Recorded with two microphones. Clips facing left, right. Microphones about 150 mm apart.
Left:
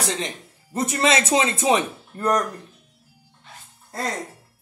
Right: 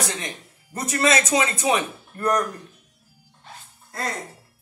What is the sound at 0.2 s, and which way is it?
Speech, 25° left (ahead or behind).